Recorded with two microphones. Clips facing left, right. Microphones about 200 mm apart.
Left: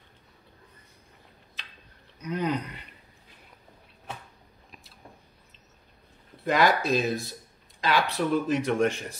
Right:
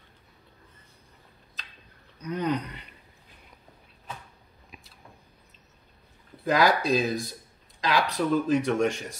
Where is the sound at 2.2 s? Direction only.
10° left (ahead or behind).